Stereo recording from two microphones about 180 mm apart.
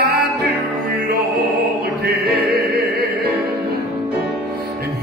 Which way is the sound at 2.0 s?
60° right (ahead or behind).